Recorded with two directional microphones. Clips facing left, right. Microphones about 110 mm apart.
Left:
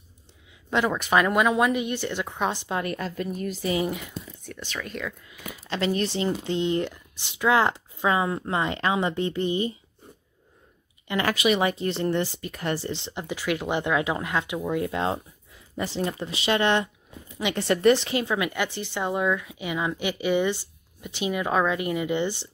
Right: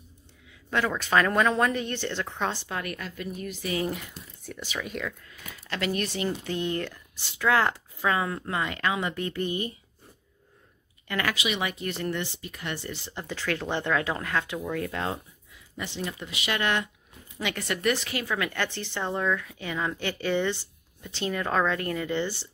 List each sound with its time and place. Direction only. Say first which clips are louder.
0.7 s a woman's voice: left 3 dB; 20° left (ahead or behind); by 3.7 s 40° left (ahead or behind)
3.9 s speech: left 3 dB; centre (ahead or behind)
5.2 s speech: left 5 dB; 10° left (ahead or behind)
5.8 s speech: left 4 dB; 30° left (ahead or behind)
11.3 s speech: left 7 dB; 45° left (ahead or behind); by 12.3 s 30° left (ahead or behind)
12.4 s speech: left 7 dB; 50° left (ahead or behind)
12.7 s a woman's voice: left 5 dB; 30° left (ahead or behind)
15.7 s a woman's voice: left 6 dB; 45° left (ahead or behind); by 22.5 s 20° left (ahead or behind)